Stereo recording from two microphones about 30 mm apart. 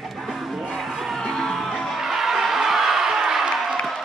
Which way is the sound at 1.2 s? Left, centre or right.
Centre.